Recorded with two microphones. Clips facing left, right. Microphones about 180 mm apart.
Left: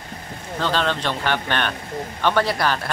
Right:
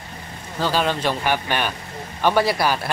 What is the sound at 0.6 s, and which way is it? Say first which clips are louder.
Speech: right 1 dB; 10° right (ahead or behind).